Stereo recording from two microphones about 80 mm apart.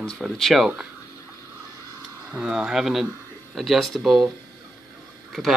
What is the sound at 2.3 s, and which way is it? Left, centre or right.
Speech, centre.